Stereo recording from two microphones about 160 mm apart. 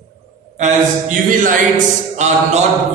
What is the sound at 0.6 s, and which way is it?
A man's voice, 50° right (ahead or behind).